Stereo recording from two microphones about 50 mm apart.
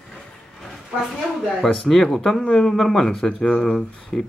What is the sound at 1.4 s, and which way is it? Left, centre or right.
Speech, centre.